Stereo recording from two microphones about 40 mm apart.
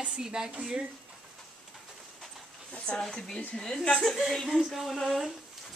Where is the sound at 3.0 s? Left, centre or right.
Centre.